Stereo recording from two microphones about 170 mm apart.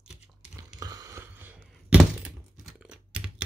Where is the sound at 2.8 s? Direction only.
5° right (ahead or behind).